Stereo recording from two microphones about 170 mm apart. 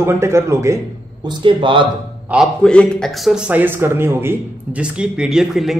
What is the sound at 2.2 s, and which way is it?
A man's voice, 5° right (ahead or behind).